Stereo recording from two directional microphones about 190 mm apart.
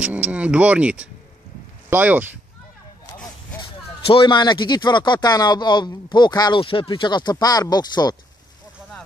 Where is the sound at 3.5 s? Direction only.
25° left (ahead or behind).